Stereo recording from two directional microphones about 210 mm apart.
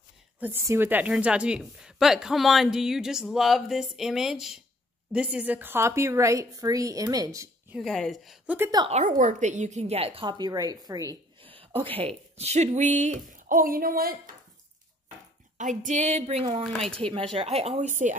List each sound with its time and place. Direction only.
0.4 s a woman's voice: 10° right (ahead or behind)
7.7 s a woman's voice: centre (ahead or behind)
8.5 s a woman's voice: 15° right (ahead or behind)
8.9 s speech: 35° right (ahead or behind); by 10.8 s 20° right (ahead or behind)
10.9 s a sound: 15° right (ahead or behind)
12.0 s speech: 30° right (ahead or behind); by 14.3 s 45° right (ahead or behind)
15.5 s speech: 35° right (ahead or behind)
16.7 s a woman's voice: centre (ahead or behind)
17.0 s speech: 25° right (ahead or behind)